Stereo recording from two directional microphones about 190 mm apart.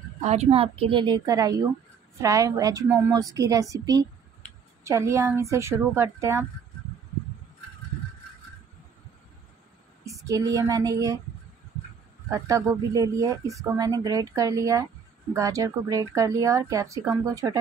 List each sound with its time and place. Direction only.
0.2 s a woman's voice: 35° right (ahead or behind); by 6.4 s 15° right (ahead or behind)
10.0 s speech: 15° right (ahead or behind)
12.3 s speech: 15° right (ahead or behind)